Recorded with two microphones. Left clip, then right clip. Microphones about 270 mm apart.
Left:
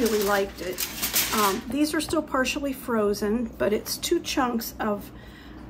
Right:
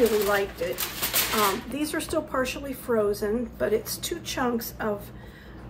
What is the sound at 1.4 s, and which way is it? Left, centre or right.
A woman's voice, centre.